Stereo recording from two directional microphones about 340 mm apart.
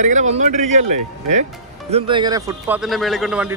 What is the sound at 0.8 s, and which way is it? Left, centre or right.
Speech, right.